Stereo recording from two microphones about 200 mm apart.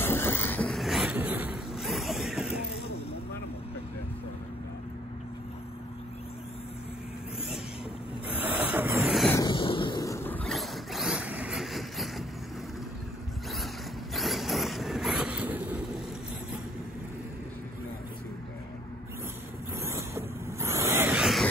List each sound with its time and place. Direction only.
0.0 s train: 10° left (ahead or behind)
1.1 s a sound: 10° right (ahead or behind)
8.5 s vehicle: 5° right (ahead or behind)
9.3 s a sound: 20° left (ahead or behind); by 12.3 s centre (ahead or behind)
14.1 s vehicle: centre (ahead or behind)
19.9 s vehicle: 15° right (ahead or behind)